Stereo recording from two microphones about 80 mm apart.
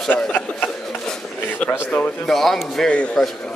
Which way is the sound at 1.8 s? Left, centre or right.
Centre.